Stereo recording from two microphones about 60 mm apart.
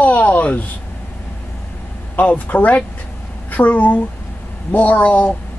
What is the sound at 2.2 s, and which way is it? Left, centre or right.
A woman's voice, left.